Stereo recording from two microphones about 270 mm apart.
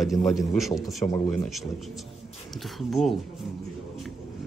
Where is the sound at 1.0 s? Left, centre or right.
Centre.